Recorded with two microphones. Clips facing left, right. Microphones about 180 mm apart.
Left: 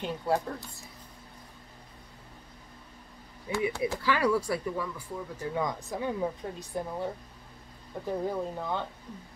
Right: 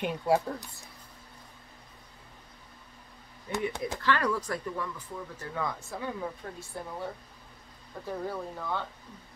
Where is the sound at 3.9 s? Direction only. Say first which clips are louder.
Left 1 dB; 10° left (ahead or behind).